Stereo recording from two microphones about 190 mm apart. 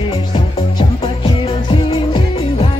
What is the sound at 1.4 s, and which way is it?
Music, 30° left (ahead or behind).